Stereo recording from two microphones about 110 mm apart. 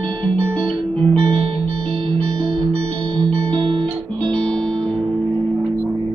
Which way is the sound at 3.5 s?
50° right (ahead or behind).